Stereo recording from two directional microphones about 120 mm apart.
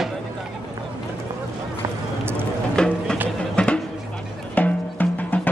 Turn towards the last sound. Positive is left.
turn(degrees=15)  # may be behind; listen again after turning